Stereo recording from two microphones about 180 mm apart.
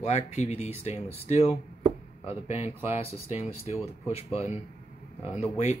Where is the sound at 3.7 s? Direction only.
35° left (ahead or behind).